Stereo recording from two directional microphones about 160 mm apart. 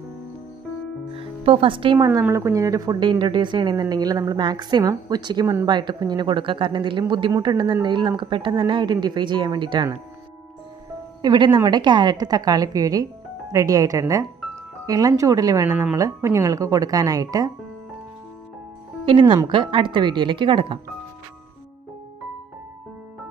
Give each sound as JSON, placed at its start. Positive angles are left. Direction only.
{"t": 1.1, "sound": "music", "side_deg": -35}
{"t": 2.2, "sound": "speech", "side_deg": -20}
{"t": 11.2, "sound": "speech", "side_deg": -30}
{"t": 19.0, "sound": "speech", "side_deg": -35}